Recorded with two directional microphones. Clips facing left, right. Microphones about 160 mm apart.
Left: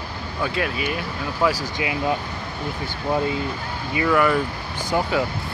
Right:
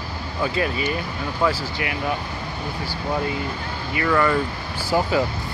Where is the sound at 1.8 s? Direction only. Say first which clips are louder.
Left 4 dB; 20° left (ahead or behind).